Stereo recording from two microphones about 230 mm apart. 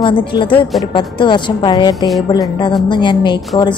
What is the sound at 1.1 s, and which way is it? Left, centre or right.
Speech, left.